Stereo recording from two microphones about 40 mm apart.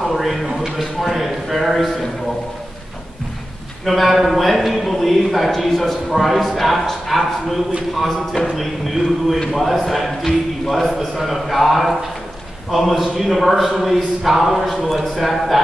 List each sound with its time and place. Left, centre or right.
0.0 s speech: centre
3.8 s speech: centre
8.4 s speech: left
9.5 s speech: centre